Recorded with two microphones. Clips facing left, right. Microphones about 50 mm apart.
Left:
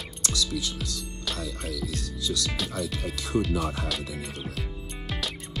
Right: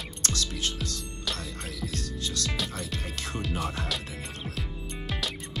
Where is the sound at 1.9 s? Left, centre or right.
Right.